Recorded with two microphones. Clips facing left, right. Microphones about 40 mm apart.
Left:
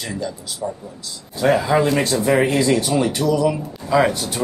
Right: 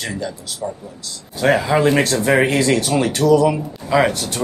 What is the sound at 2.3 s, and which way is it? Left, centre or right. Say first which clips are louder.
Speech: right 1 dB; right.